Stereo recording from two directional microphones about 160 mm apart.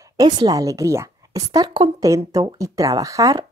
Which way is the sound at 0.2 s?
25° right (ahead or behind).